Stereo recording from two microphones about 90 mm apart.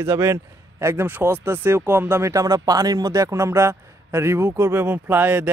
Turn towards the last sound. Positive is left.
turn(degrees=-20)  # may be behind; listen again after turning